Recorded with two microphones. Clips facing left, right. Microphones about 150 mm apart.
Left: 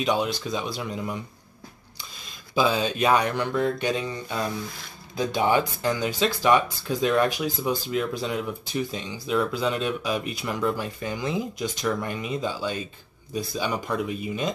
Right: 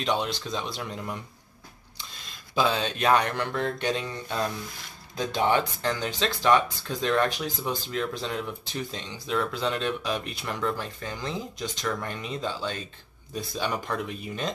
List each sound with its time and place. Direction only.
0.0 s speech: 10° left (ahead or behind)
2.5 s speech: 5° left (ahead or behind)